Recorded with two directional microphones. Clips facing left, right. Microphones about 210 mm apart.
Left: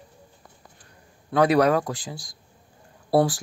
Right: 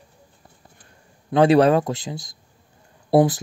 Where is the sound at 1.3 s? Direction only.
25° right (ahead or behind).